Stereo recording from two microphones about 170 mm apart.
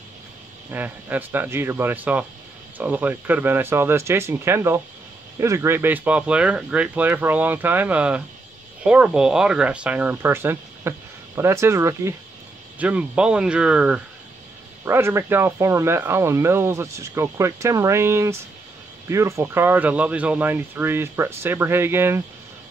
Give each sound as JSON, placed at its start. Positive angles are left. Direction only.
{"t": 0.7, "sound": "speech", "side_deg": -10}